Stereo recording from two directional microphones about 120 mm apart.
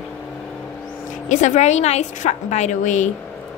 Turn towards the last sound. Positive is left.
turn(degrees=90)